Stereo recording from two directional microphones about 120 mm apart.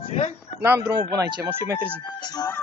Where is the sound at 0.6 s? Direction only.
20° right (ahead or behind).